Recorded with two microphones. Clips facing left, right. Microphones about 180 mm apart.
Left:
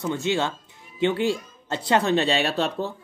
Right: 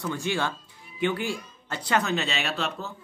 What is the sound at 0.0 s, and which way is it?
A man's voice, 20° left (ahead or behind).